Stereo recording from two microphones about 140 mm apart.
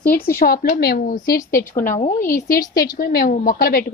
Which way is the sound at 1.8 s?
65° left (ahead or behind).